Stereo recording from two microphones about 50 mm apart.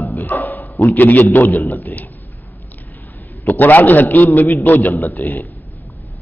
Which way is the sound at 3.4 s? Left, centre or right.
Left.